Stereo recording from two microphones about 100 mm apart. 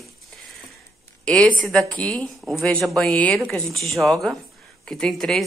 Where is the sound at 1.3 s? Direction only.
10° left (ahead or behind).